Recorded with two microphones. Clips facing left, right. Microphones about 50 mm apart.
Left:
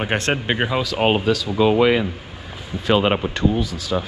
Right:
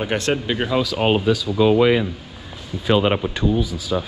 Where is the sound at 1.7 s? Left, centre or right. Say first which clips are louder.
Right 1 dB; left.